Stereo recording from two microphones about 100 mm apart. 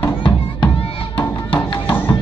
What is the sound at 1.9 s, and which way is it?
Music, 20° left (ahead or behind).